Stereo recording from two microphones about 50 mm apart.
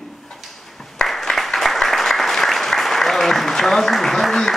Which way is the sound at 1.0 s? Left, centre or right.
Centre.